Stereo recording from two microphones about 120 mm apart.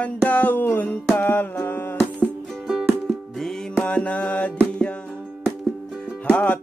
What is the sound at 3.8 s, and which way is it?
Mantra, 10° left (ahead or behind).